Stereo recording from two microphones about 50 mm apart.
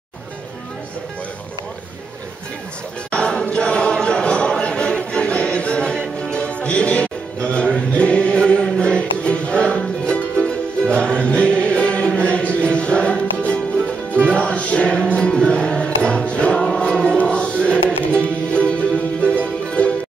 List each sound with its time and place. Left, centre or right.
3.1 s chant: centre
4.0 s choir: left
7.4 s music: left